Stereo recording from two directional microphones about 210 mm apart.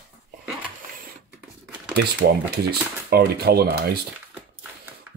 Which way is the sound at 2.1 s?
50° right (ahead or behind).